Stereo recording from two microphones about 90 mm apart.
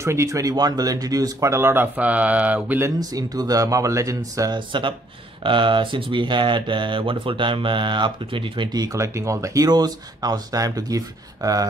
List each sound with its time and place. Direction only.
0.0 s speech: 30° right (ahead or behind)
3.0 s speech: 45° right (ahead or behind)
4.6 s speech: 65° right (ahead or behind)
8.7 s speech: 40° right (ahead or behind)